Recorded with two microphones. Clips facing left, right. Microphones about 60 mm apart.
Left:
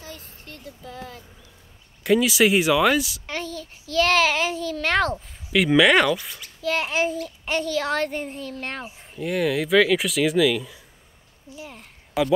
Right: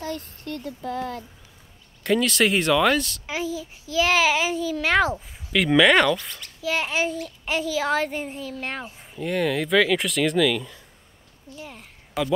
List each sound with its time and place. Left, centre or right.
0.0 s speech: right
2.0 s a child's voice: centre
3.3 s a child's voice: centre